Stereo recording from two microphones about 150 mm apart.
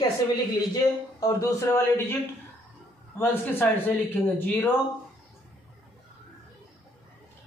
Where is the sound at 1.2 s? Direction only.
20° left (ahead or behind).